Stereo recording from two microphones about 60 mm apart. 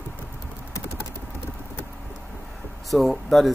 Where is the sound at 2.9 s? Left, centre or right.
Centre.